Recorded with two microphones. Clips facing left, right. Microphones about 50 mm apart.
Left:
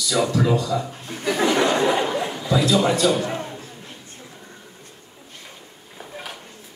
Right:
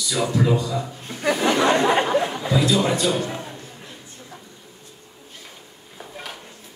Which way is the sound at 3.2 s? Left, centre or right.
Left.